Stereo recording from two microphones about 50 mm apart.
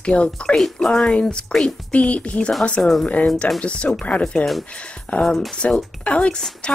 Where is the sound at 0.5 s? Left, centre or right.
Centre.